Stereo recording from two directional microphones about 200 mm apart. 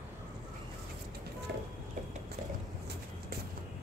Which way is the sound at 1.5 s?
55° right (ahead or behind).